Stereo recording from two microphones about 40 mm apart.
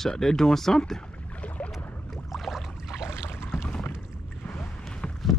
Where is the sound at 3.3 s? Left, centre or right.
Left.